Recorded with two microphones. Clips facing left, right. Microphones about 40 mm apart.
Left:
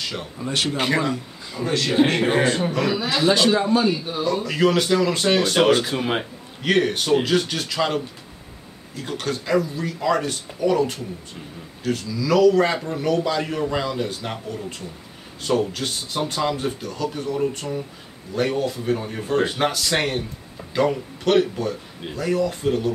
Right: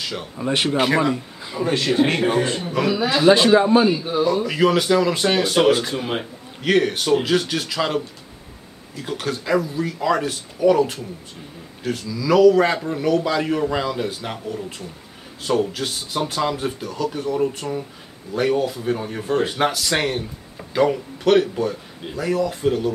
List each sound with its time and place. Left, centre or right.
0.0 s speech: centre
0.4 s a man's voice: right
0.7 s speech: centre
1.1 s speech: right
2.7 s speech: centre
3.5 s a man's voice: right
3.9 s a man's voice: centre
6.6 s a man's voice: centre